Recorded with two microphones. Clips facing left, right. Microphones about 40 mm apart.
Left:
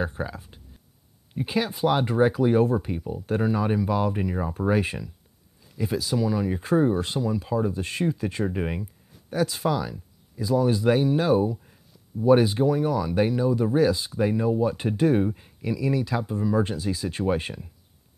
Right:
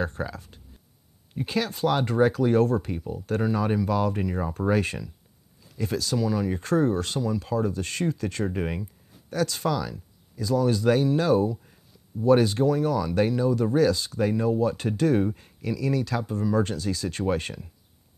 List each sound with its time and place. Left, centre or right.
0.0 s speech: centre